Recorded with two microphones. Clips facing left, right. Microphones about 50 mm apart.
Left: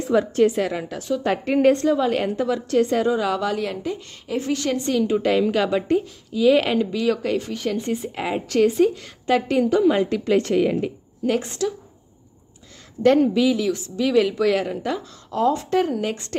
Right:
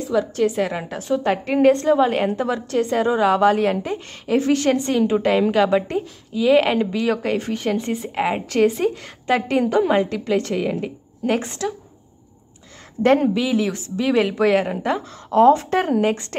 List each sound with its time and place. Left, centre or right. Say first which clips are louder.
0.1 s a woman's voice: left 2 dB; centre
0.6 s a woman's voice: right 1 dB; centre
1.2 s a woman's voice: right 1 dB; centre
1.9 s a woman's voice: right 3 dB; right
2.7 s a woman's voice: left 3 dB; centre
3.0 s speech: right 4 dB; right
4.3 s a woman's voice: right 6 dB; right
4.8 s a woman's voice: right 2 dB; right
10.0 s a woman's voice: left 1 dB; centre
11.2 s a woman's voice: even; centre
13.0 s a woman's voice: left 1 dB; right
15.3 s speech: right 6 dB; right